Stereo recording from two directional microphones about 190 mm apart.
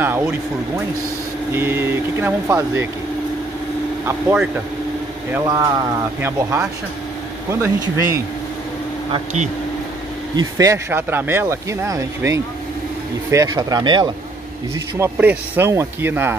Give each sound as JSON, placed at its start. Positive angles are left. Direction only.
{"t": 0.0, "sound": "speech", "side_deg": -10}
{"t": 4.0, "sound": "speech", "side_deg": -15}
{"t": 10.3, "sound": "speech", "side_deg": -15}
{"t": 15.0, "sound": "speech", "side_deg": -10}